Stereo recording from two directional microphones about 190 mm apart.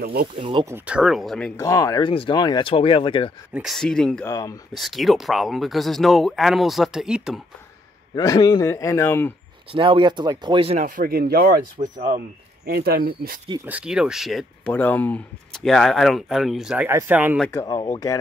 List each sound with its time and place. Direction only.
0.0 s speech: 55° right (ahead or behind)
0.4 s speech: 25° right (ahead or behind)
0.7 s speech: 10° right (ahead or behind)
1.6 s speech: 15° left (ahead or behind)
3.5 s speech: centre (ahead or behind)
4.3 s a man's voice: 15° left (ahead or behind)
4.7 s speech: centre (ahead or behind)
8.1 s a man's voice: 20° left (ahead or behind)
9.7 s speech: 30° right (ahead or behind)
11.0 s speech: 50° right (ahead or behind)
13.7 s speech: 5° right (ahead or behind)
17.5 s a man's voice: 15° left (ahead or behind)